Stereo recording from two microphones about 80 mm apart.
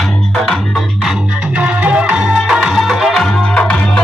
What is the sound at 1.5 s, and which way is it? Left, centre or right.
Music, centre.